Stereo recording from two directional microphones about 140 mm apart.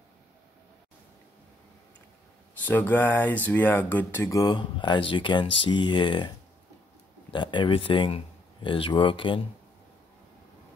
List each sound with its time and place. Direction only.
2.6 s speech: 15° left (ahead or behind); by 9.4 s 35° left (ahead or behind)